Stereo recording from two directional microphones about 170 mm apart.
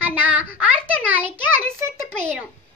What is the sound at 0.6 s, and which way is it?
Speech, 10° right (ahead or behind).